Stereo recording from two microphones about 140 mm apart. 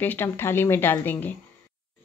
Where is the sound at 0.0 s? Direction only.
15° left (ahead or behind).